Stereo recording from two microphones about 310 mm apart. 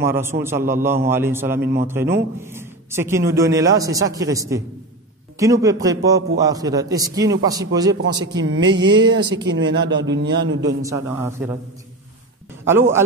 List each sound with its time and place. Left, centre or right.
0.0 s a man's voice: centre
8.0 s speech: right
10.8 s a man's voice: centre
12.6 s a man's voice: centre